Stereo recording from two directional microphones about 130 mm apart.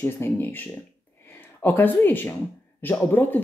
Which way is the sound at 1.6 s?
15° left (ahead or behind).